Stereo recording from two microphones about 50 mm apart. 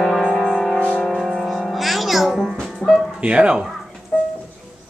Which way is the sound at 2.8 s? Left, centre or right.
Left.